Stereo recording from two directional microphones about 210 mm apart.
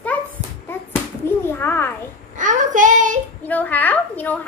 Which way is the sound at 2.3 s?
35° right (ahead or behind).